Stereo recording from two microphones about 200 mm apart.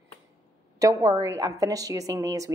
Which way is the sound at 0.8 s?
15° right (ahead or behind).